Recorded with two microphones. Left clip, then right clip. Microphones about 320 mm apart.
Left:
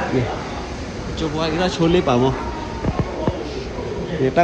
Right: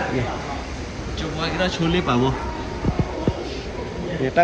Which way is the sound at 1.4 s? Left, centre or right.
Centre.